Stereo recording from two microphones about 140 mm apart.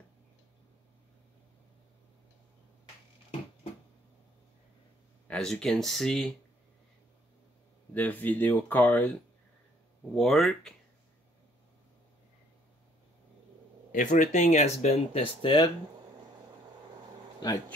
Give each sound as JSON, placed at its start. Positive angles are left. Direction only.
{"t": 5.3, "sound": "speech", "side_deg": 5}
{"t": 7.9, "sound": "speech", "side_deg": 10}
{"t": 10.1, "sound": "speech", "side_deg": 0}
{"t": 13.9, "sound": "speech", "side_deg": 65}
{"t": 17.4, "sound": "speech", "side_deg": 30}